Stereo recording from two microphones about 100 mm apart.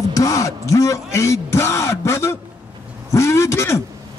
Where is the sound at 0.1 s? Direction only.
35° left (ahead or behind).